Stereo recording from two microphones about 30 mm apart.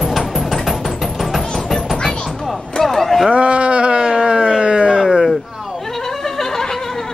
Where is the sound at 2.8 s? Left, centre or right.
Centre.